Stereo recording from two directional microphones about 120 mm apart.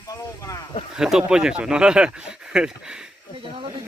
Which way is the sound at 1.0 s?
5° right (ahead or behind).